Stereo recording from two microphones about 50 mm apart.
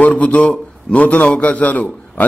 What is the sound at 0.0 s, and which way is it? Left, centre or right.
A man's voice, left.